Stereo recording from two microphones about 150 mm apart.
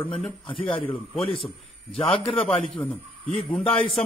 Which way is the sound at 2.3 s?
5° left (ahead or behind).